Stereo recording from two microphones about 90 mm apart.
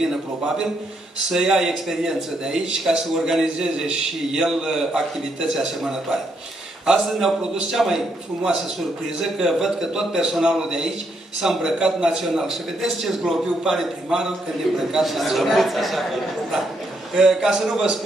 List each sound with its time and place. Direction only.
1.3 s a man's voice: 5° right (ahead or behind)